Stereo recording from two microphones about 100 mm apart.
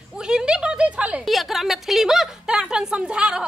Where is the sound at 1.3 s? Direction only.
Centre (ahead or behind).